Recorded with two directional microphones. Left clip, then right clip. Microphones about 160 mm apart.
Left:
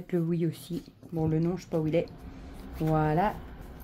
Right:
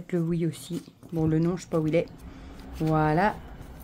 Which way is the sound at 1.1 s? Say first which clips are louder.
Right 3 dB; 25° right (ahead or behind).